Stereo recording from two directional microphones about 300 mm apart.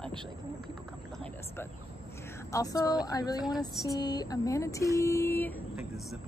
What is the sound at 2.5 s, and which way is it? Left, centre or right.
Speech, centre.